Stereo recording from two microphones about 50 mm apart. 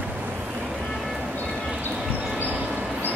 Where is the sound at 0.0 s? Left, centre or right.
Right.